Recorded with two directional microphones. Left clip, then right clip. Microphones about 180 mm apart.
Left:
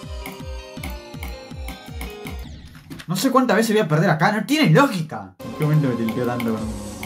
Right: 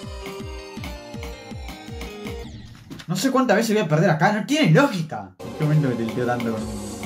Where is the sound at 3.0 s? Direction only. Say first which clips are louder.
Left 2 dB; 15° left (ahead or behind).